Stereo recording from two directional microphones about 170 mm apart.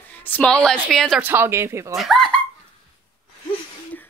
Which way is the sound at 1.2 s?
15° right (ahead or behind).